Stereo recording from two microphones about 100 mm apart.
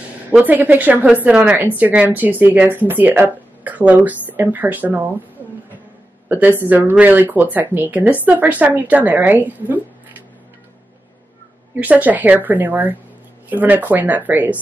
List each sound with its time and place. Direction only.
0.3 s speech: 15° right (ahead or behind)
6.2 s speech: 20° right (ahead or behind)
11.8 s speech: 15° right (ahead or behind)